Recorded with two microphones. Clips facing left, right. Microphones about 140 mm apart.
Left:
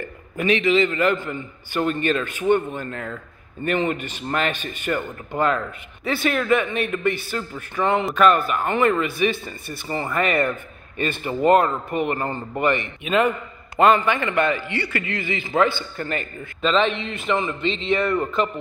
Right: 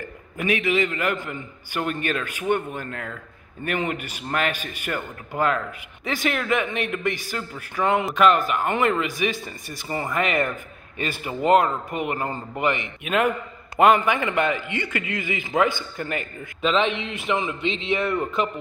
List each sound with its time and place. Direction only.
0.4 s a man's voice: 10° right (ahead or behind)